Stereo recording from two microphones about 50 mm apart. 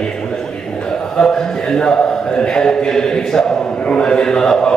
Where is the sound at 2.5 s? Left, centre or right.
Centre.